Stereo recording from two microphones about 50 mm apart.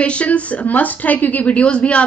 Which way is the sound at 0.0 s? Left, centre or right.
Left.